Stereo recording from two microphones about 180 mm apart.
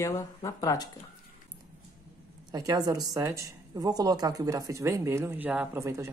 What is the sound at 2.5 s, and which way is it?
Speech, 20° right (ahead or behind).